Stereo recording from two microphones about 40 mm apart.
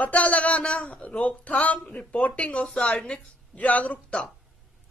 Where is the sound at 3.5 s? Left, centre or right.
Left.